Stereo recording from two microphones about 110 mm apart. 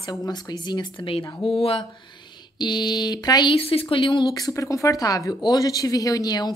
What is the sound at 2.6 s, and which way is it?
Speech, 40° left (ahead or behind).